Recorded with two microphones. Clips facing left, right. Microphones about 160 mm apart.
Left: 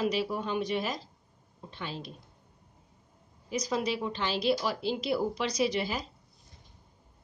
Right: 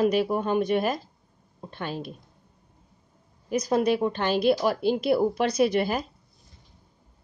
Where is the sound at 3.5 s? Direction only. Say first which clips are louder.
Right 8 dB; 55° right (ahead or behind).